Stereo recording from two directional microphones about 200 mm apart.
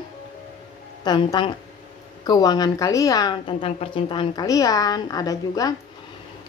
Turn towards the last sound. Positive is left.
turn(degrees=20)  # may be behind; listen again after turning